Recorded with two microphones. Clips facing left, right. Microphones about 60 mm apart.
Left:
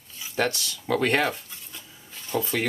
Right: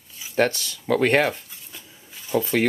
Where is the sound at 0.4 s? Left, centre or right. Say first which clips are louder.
Right 5 dB; right.